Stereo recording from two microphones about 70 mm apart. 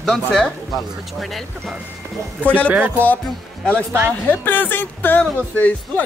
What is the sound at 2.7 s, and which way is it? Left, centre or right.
Speech, right.